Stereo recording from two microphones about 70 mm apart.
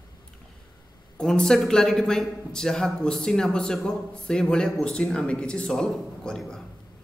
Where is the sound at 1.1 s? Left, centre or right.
Centre.